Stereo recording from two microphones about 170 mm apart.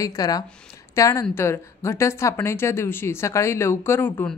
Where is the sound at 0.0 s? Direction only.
20° left (ahead or behind).